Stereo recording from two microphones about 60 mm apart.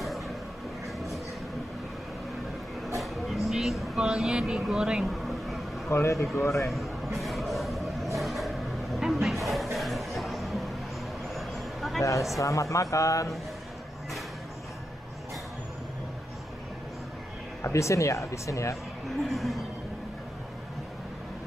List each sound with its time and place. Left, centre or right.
3.4 s speech: centre
5.0 s vehicle: centre
5.9 s speech: left
7.2 s vehicle: centre
12.4 s speech: left
17.6 s speech: left
19.0 s speech: centre